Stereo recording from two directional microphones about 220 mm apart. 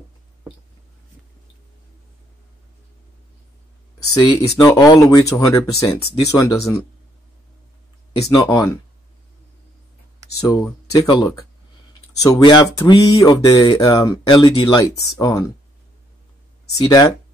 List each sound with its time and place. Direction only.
4.1 s speech: 15° left (ahead or behind)
8.3 s speech: 15° left (ahead or behind)
10.2 s a sound: 15° right (ahead or behind)
10.9 s speech: 20° left (ahead or behind)
16.7 s speech: 15° left (ahead or behind)